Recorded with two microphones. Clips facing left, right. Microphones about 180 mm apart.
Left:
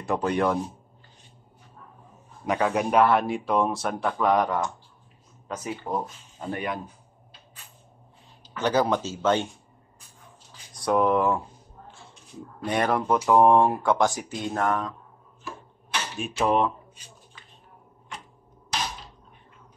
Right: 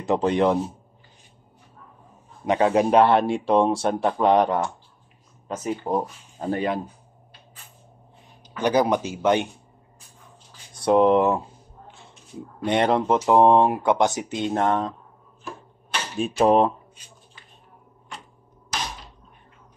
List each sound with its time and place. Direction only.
0.0 s speech: 20° right (ahead or behind)
2.4 s speech: 25° right (ahead or behind)
8.5 s speech: 15° right (ahead or behind)
10.7 s speech: 25° right (ahead or behind)
12.6 s speech: 25° right (ahead or behind)
16.3 s speech: 35° right (ahead or behind)